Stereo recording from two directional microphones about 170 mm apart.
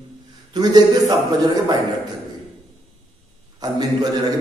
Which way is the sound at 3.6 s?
20° right (ahead or behind).